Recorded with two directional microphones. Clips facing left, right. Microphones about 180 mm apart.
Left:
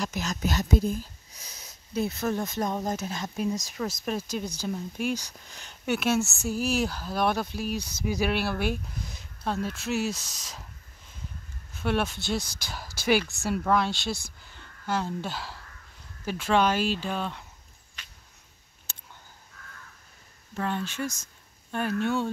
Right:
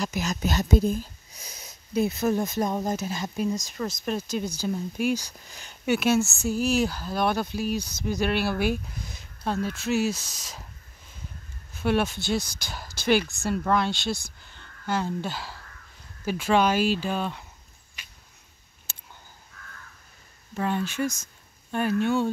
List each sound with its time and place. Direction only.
0.0 s speech: 10° right (ahead or behind)
0.5 s speech: 25° right (ahead or behind)
2.0 s speech: 10° right (ahead or behind)
11.8 s speech: 5° right (ahead or behind)
18.0 s a sound: 10° right (ahead or behind)
20.5 s speech: 10° right (ahead or behind)